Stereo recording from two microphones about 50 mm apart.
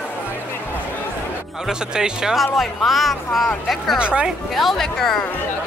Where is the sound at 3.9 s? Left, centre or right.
Right.